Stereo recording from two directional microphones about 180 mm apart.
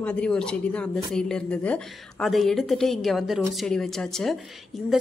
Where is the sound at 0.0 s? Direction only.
5° left (ahead or behind).